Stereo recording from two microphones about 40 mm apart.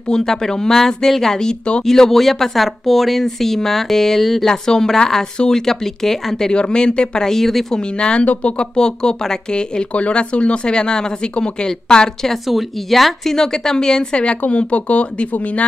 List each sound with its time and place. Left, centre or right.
0.1 s speech: centre
1.9 s speech: centre
4.5 s speech: centre
7.7 s speech: left
8.7 s speech: centre
9.9 s speech: left
12.4 s speech: centre; by 15.6 s left